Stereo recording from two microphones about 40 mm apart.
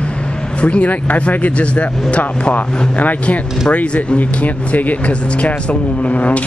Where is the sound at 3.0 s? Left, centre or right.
Left.